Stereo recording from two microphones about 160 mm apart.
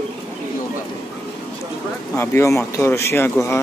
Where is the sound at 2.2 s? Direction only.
15° left (ahead or behind).